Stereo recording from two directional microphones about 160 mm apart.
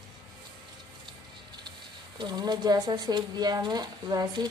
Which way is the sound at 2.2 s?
25° right (ahead or behind).